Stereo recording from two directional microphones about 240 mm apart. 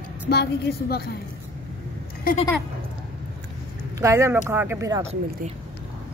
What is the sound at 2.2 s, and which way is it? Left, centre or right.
Speech, left.